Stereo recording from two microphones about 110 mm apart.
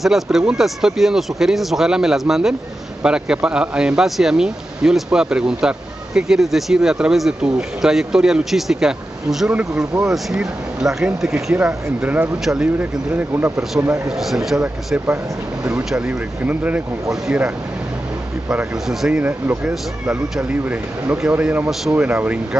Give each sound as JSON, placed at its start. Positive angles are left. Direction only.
{"t": 0.0, "sound": "speech", "side_deg": -5}
{"t": 11.5, "sound": "speech", "side_deg": -15}
{"t": 14.0, "sound": "speech", "side_deg": -5}
{"t": 18.5, "sound": "speech", "side_deg": -5}